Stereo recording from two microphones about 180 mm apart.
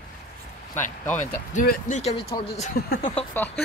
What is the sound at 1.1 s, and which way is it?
Speech, 45° left (ahead or behind).